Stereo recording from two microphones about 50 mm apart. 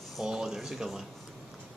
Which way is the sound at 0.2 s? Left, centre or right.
Centre.